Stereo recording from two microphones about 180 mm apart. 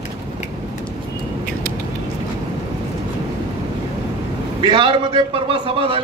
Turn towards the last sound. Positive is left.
turn(degrees=-30)  # may be behind; listen again after turning